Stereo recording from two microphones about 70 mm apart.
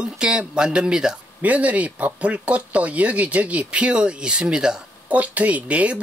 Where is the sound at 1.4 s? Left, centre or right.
Right.